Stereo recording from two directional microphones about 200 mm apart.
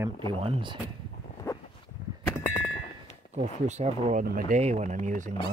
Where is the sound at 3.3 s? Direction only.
35° right (ahead or behind).